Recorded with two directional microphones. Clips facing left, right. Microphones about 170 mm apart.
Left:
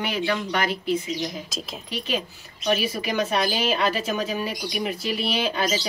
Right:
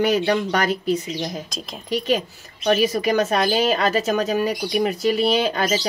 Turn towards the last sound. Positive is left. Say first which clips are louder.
# right 5 dB
turn(degrees=-45)  # may be behind; listen again after turning